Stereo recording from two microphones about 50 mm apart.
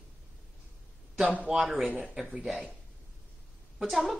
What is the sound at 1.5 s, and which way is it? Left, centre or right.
Speech, centre.